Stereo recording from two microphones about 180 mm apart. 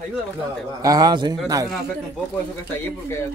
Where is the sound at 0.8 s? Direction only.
20° right (ahead or behind).